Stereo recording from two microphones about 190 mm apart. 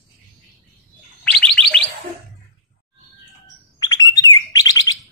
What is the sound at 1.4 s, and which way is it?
Chirp tone, 5° left (ahead or behind).